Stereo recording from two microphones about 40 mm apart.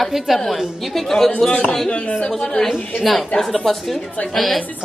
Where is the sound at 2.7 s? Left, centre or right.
Centre.